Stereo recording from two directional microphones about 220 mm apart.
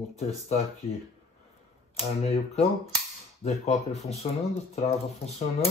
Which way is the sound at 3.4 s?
30° left (ahead or behind).